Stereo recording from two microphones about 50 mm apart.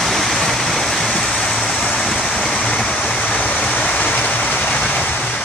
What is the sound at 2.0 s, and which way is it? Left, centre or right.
Vehicle, centre.